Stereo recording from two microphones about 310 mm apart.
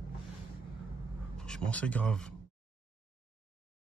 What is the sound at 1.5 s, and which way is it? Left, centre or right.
Speech, centre.